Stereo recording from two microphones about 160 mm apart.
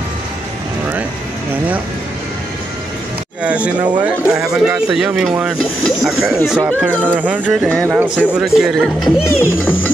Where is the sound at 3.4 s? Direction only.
10° right (ahead or behind).